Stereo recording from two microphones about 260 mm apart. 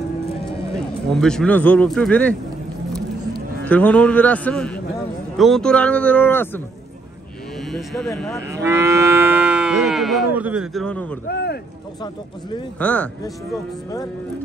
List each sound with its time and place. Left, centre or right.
1.1 s speech: centre
3.6 s speech: centre
7.7 s speech: centre
8.5 s livestock: centre
10.3 s speech: centre
11.2 s speech: left
12.7 s speech: centre